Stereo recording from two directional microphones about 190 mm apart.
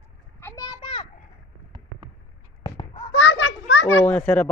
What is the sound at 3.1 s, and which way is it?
Children playing, 75° left (ahead or behind).